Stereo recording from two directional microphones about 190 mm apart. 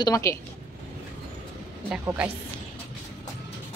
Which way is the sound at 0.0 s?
15° left (ahead or behind).